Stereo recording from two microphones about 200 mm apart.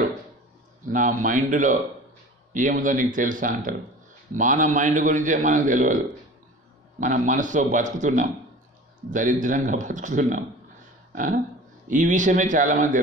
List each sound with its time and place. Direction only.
0.9 s a man's voice: 40° right (ahead or behind)